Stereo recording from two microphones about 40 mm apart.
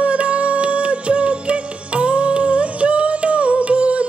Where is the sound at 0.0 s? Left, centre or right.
Right.